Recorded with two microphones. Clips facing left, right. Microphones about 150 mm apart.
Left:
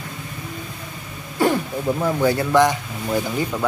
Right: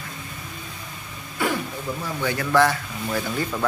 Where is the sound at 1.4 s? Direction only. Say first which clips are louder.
Left 6 dB; 35° left (ahead or behind).